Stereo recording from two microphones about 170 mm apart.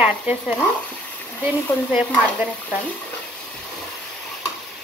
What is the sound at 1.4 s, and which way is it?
Speech, 5° right (ahead or behind).